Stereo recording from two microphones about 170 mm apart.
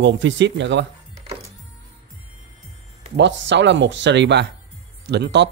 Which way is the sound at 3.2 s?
90° right.